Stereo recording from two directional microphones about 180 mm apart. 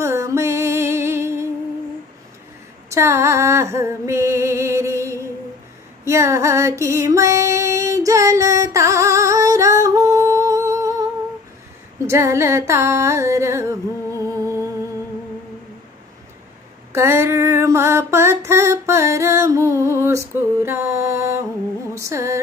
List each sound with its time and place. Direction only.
0.0 s music: 15° right (ahead or behind)
2.9 s a sound: 15° right (ahead or behind)
6.0 s female singing: 15° right (ahead or behind)
12.1 s music: 15° right (ahead or behind)
16.9 s female singing: 15° right (ahead or behind)
21.9 s music: 15° right (ahead or behind)